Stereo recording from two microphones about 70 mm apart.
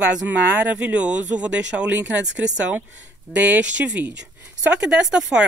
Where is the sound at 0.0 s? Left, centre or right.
Right.